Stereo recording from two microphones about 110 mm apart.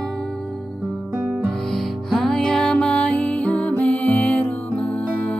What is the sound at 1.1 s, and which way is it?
Music, 15° right (ahead or behind).